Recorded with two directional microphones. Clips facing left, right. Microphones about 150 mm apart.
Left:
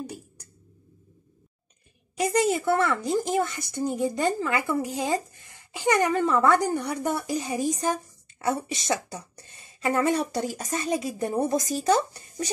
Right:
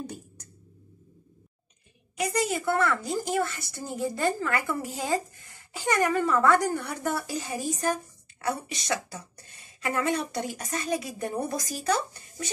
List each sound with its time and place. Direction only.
2.1 s speech: 30° left (ahead or behind)